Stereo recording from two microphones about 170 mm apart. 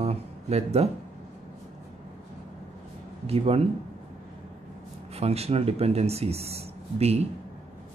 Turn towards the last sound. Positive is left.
turn(degrees=-40)  # may be behind; listen again after turning